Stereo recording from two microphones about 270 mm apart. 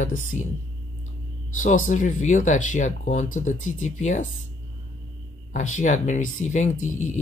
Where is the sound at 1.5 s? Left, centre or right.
Left.